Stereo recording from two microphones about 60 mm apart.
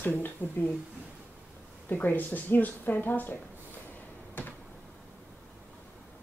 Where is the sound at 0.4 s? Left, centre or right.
Left.